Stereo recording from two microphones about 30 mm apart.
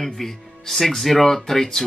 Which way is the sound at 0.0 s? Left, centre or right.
Centre.